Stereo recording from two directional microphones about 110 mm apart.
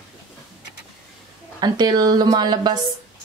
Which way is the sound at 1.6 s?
40° right (ahead or behind).